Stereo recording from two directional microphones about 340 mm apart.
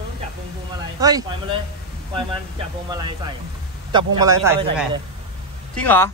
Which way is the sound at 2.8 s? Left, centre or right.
Centre.